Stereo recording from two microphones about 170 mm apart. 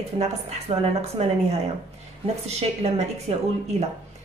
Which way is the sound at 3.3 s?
35° right (ahead or behind).